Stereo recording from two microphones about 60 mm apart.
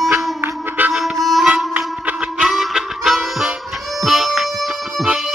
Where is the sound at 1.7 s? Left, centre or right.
Right.